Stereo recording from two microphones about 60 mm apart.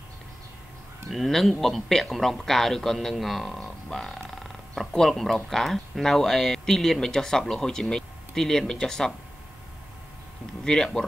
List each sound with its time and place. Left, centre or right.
1.1 s a man's voice: centre
10.6 s speech: centre